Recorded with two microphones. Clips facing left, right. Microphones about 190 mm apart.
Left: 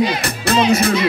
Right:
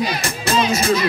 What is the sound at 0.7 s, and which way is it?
Speech, 60° left (ahead or behind).